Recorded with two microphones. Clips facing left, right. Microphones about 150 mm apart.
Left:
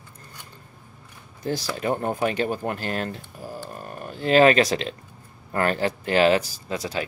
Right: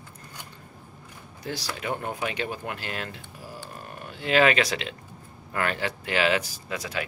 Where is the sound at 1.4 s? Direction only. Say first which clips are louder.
Left 6 dB; 40° left (ahead or behind).